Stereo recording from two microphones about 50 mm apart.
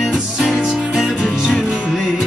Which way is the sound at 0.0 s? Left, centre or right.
Centre.